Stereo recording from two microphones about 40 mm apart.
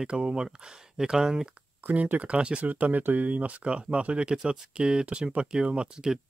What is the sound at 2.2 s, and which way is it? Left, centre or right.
Speech, right.